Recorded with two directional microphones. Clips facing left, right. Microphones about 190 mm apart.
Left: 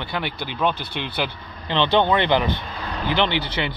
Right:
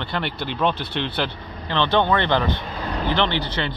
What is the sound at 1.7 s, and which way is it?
Speech, 15° left (ahead or behind).